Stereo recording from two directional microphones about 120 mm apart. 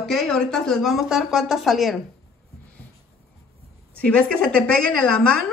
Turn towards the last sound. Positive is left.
turn(degrees=10)  # may be behind; listen again after turning